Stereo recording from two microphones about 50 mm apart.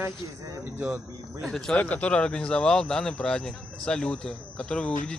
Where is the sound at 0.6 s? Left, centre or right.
Right.